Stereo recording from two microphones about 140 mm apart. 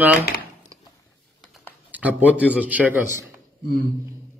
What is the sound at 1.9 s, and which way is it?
A man's voice, 10° right (ahead or behind).